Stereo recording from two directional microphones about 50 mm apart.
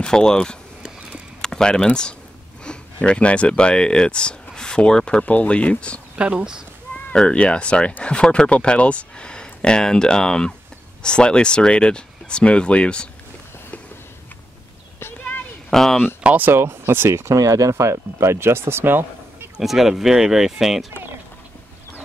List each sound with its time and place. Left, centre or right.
0.0 s speech: centre
5.2 s speech: left
6.1 s speech: centre
7.2 s speech: centre
15.7 s speech: centre
16.3 s speech: right
17.1 s speech: right
19.6 s speech: centre